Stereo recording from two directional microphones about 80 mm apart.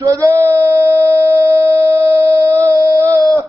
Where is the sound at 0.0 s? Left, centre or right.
Right.